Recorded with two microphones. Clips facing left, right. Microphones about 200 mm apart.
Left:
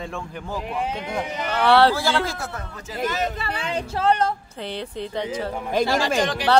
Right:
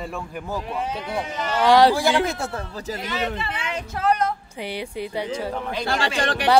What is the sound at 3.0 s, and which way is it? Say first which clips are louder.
Speech: left 4 dB; 45° left (ahead or behind).